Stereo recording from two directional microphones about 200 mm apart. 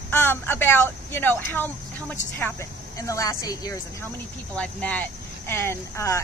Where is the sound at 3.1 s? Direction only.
15° left (ahead or behind).